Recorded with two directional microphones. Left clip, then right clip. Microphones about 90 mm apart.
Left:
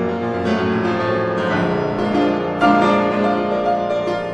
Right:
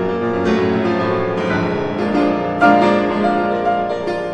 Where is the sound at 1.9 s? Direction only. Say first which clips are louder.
Right 1 dB; 15° right (ahead or behind).